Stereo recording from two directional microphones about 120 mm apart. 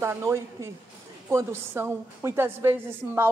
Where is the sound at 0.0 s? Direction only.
20° right (ahead or behind).